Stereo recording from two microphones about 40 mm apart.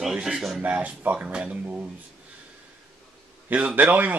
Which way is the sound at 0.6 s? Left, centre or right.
Right.